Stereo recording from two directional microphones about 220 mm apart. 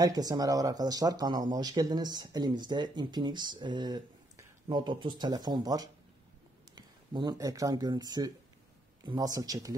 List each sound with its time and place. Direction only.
0.0 s speech: 15° right (ahead or behind)